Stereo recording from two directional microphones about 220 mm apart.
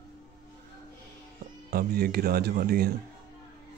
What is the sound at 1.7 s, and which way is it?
Speech, 45° right (ahead or behind).